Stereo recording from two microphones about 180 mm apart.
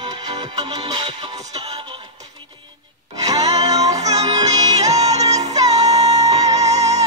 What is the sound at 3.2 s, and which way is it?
Music, 20° right (ahead or behind).